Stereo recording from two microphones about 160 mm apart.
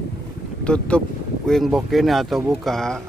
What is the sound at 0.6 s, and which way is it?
Speech, 5° left (ahead or behind).